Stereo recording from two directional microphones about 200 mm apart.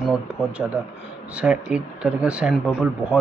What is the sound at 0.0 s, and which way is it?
Speech, 5° right (ahead or behind).